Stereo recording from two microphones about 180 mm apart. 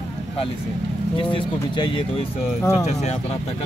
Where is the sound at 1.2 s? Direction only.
25° left (ahead or behind).